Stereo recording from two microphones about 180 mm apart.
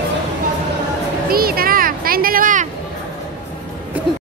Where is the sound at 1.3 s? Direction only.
55° right (ahead or behind).